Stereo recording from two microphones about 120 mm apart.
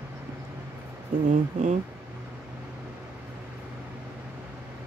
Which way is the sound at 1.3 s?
85° right.